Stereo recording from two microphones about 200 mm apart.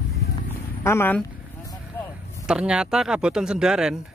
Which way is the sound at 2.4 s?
5° right (ahead or behind).